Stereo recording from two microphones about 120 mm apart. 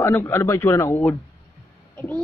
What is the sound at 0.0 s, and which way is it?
A man's voice, 20° left (ahead or behind).